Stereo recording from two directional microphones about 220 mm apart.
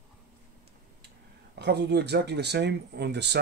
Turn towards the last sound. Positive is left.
turn(degrees=-50)  # may be behind; listen again after turning